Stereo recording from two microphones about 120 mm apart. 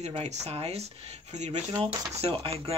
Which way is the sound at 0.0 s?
70° right (ahead or behind).